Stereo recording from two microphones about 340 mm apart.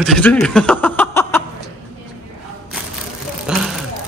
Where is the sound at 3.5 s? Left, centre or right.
Centre.